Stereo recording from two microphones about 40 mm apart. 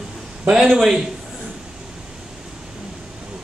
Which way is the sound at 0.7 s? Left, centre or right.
Centre.